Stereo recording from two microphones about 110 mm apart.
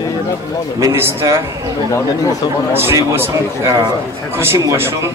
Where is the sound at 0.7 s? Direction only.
25° right (ahead or behind).